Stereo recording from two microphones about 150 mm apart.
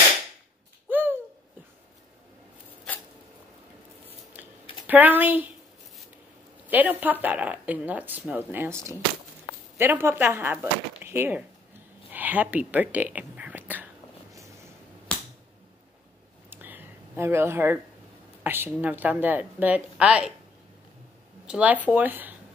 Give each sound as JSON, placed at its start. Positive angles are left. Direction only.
{"t": 0.8, "sound": "bird", "side_deg": -10}
{"t": 4.4, "sound": "typing", "side_deg": -10}
{"t": 6.7, "sound": "speech", "side_deg": -10}
{"t": 14.3, "sound": "a sound", "side_deg": -20}
{"t": 16.4, "sound": "a sound", "side_deg": -15}
{"t": 18.4, "sound": "speech", "side_deg": -15}
{"t": 21.5, "sound": "speech", "side_deg": -10}